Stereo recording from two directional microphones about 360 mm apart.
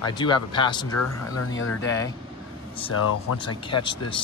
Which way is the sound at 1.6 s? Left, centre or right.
Left.